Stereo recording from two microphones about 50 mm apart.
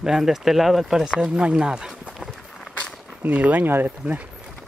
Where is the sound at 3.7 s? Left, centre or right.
Right.